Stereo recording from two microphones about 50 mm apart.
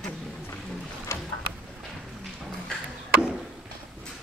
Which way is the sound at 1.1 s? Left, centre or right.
Left.